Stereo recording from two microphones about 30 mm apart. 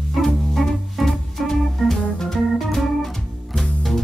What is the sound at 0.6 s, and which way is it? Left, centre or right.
Music, centre.